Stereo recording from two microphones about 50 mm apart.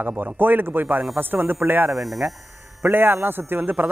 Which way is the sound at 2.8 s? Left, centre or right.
Right.